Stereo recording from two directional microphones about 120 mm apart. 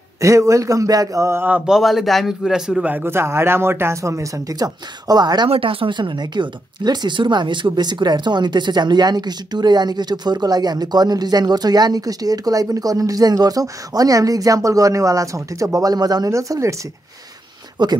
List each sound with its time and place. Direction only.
0.2 s speech: 25° right (ahead or behind)
1.7 s a man's voice: centre (ahead or behind)
2.9 s speech: 20° right (ahead or behind); by 5.5 s 35° right (ahead or behind)
5.5 s speech: 50° right (ahead or behind); by 16.7 s 25° right (ahead or behind)
17.8 s speech: 40° right (ahead or behind)